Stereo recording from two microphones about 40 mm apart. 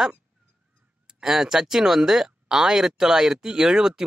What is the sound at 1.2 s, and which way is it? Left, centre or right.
Speech, centre.